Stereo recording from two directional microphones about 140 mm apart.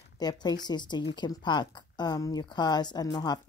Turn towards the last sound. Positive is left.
turn(degrees=30)  # may be behind; listen again after turning